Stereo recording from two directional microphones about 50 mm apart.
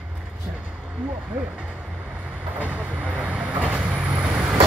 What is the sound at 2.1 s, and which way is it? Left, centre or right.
Vehicle, right.